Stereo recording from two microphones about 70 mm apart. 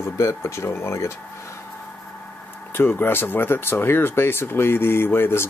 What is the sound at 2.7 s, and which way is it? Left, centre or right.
Speech, left.